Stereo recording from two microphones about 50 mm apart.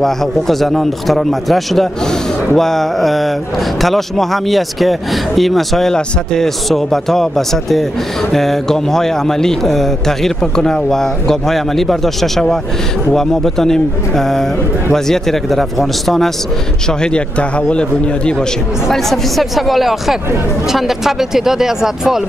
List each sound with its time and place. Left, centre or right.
0.0 s speech: centre
17.0 s a man's voice: left
18.9 s speech: centre